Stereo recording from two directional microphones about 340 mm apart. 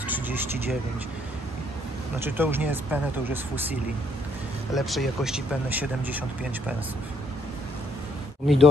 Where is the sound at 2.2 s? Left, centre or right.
Centre.